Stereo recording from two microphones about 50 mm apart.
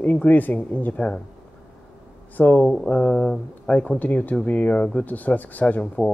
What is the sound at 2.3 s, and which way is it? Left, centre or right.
Speech, left.